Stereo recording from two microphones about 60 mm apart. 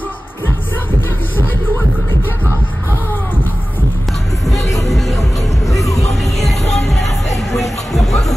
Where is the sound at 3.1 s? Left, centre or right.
Left.